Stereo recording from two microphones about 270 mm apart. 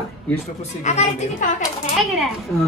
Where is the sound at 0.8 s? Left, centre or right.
Left.